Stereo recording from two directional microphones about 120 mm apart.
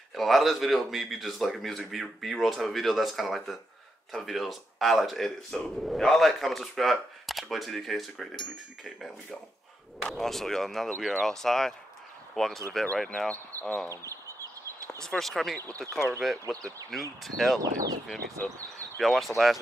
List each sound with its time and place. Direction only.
0.1 s speech: centre (ahead or behind)
13.8 s chicken: 25° right (ahead or behind)
15.0 s speech: 5° left (ahead or behind)
17.6 s speech: 30° right (ahead or behind)
18.9 s speech: centre (ahead or behind)